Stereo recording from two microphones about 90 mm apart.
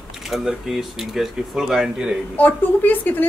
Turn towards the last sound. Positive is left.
turn(degrees=20)  # may be behind; listen again after turning